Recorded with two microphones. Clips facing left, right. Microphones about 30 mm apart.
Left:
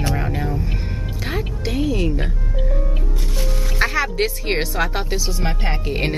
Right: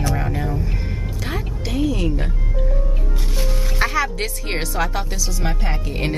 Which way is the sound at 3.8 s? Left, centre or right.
Centre.